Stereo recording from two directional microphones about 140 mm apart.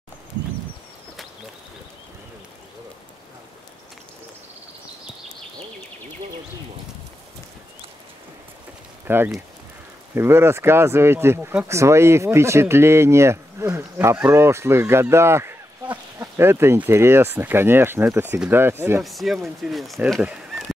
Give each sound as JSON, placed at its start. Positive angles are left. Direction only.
{"t": 9.0, "sound": "speech", "side_deg": -15}
{"t": 19.0, "sound": "speech", "side_deg": 0}